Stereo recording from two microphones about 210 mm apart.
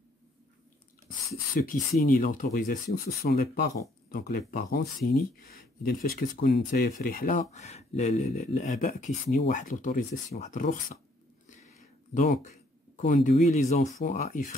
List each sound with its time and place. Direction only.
1.5 s speech: 45° left (ahead or behind)
11.4 s a sound: 35° left (ahead or behind)
13.9 s speech: 40° left (ahead or behind)